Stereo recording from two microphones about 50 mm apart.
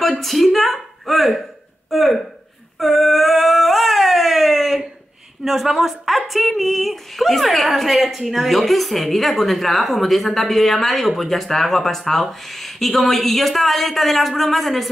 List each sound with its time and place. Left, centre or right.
0.2 s speech: centre
2.8 s dog: centre
5.4 s speech: centre